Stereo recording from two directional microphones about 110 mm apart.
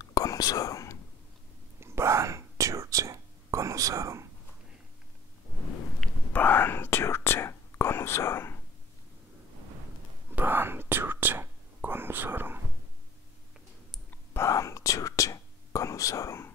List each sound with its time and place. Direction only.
0.0 s whispering: 30° left (ahead or behind)
1.8 s whispering: 25° right (ahead or behind)
6.3 s whispering: 15° left (ahead or behind)
10.3 s whispering: 20° right (ahead or behind)
14.1 s whispering: 25° left (ahead or behind)